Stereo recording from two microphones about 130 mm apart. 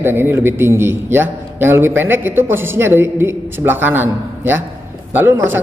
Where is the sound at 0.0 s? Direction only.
15° right (ahead or behind).